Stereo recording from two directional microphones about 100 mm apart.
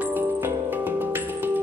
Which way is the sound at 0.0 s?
20° right (ahead or behind).